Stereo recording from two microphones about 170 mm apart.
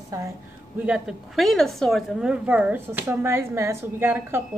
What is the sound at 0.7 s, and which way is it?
A woman's voice, 5° right (ahead or behind).